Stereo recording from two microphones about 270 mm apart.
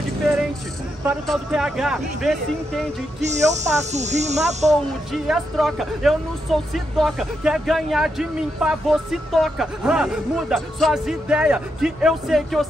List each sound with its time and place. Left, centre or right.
1.0 s speech: centre
3.2 s speech: right
5.1 s speech: centre